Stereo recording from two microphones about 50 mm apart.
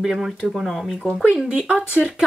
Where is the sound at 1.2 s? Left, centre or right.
Centre.